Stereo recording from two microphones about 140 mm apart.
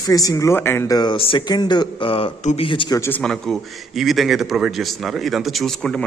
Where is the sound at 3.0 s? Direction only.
10° left (ahead or behind).